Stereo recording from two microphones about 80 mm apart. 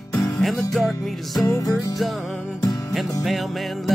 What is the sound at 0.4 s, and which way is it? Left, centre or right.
Music, centre.